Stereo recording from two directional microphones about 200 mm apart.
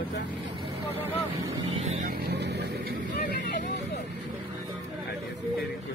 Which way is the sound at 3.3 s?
55° left (ahead or behind).